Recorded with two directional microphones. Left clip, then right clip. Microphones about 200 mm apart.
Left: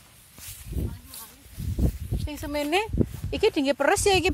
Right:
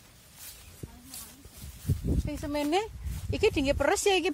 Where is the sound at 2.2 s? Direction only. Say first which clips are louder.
Left 4 dB; 30° left (ahead or behind).